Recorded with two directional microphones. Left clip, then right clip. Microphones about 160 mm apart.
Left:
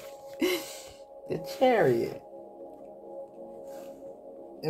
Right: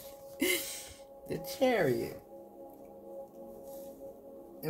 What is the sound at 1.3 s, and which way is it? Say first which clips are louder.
Speech: left 5 dB; 35° right (ahead or behind).